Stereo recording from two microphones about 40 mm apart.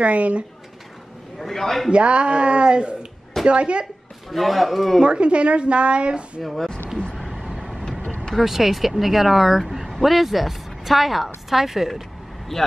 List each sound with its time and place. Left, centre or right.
0.0 s speech: right
1.4 s speech: centre
1.9 s speech: right
4.3 s speech: centre
5.0 s speech: right
6.4 s speech: centre
7.2 s vehicle: centre
8.4 s speech: centre
12.5 s speech: centre